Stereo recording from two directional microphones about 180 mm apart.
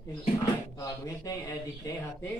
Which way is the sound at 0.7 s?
20° left (ahead or behind).